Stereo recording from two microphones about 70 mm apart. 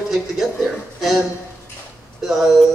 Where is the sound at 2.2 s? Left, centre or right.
Centre.